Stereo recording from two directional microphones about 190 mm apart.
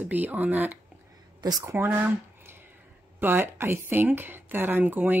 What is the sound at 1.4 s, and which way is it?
Speech, 20° right (ahead or behind).